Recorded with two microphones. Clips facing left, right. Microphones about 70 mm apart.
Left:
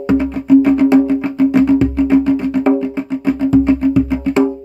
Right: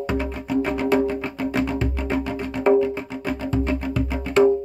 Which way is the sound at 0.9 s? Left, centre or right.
Centre.